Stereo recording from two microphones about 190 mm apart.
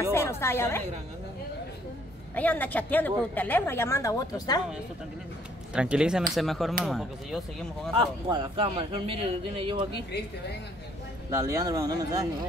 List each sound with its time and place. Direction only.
0.1 s a woman's voice: 15° left (ahead or behind)
2.3 s a woman's voice: 10° left (ahead or behind)
5.8 s speech: 5° right (ahead or behind)
7.9 s speech: 25° right (ahead or behind)
11.2 s speech: 15° right (ahead or behind)